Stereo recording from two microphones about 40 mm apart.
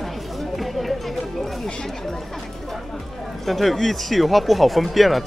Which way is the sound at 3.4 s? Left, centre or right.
Centre.